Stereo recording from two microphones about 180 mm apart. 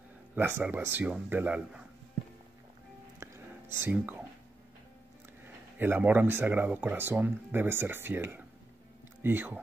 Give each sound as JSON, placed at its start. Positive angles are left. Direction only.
{"t": 0.4, "sound": "speech", "side_deg": -10}
{"t": 3.2, "sound": "whispering", "side_deg": -15}
{"t": 3.7, "sound": "speech", "side_deg": -10}
{"t": 5.8, "sound": "speech", "side_deg": -10}